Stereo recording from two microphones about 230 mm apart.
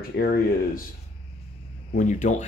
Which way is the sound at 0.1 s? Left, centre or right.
Left.